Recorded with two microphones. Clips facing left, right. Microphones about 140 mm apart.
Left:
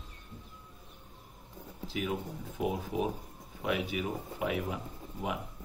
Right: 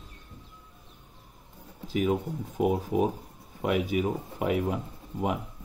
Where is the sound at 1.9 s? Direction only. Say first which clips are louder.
Right 8 dB; 45° right (ahead or behind).